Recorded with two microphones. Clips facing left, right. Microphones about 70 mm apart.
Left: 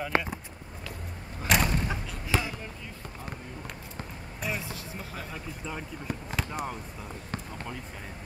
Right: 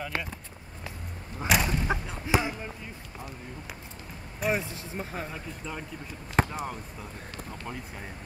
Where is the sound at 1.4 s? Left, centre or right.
Centre.